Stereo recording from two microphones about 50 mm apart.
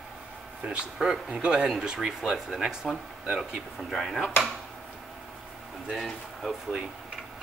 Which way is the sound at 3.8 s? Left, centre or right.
Centre.